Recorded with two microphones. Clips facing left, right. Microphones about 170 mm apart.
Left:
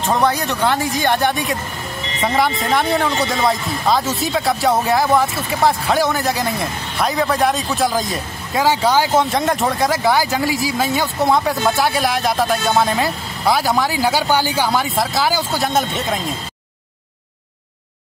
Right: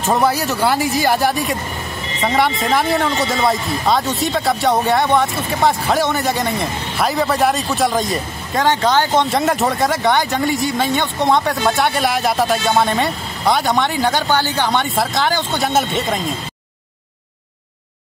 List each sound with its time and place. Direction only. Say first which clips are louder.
0.0 s speech: right 1 dB; 5° right (ahead or behind)